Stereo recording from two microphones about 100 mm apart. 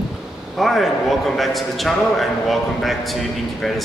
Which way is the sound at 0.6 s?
Centre (ahead or behind).